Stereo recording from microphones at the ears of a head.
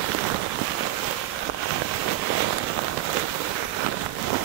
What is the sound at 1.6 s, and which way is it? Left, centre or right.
Rain, right.